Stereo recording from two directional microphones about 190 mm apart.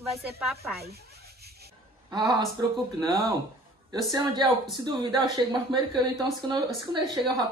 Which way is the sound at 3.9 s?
25° right (ahead or behind).